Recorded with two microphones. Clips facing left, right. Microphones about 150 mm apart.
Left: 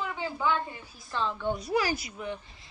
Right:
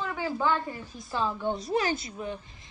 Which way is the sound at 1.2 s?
10° right (ahead or behind).